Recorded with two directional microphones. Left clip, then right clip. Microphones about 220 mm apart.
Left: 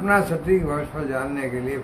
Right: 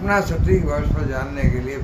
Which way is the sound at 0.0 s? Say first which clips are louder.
Even; 5° left (ahead or behind).